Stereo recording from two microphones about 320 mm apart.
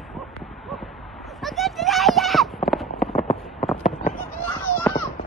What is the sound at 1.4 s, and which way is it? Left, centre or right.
Clip-clop, centre.